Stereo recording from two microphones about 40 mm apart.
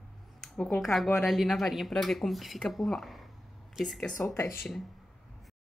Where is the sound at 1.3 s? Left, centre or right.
Centre.